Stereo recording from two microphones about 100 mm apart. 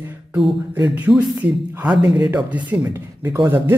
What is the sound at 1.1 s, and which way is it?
Speech, 10° right (ahead or behind).